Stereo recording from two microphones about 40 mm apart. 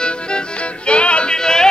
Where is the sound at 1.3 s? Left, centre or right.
Centre.